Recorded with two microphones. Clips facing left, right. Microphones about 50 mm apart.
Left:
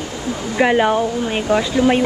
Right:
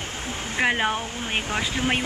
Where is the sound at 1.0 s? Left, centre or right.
Right.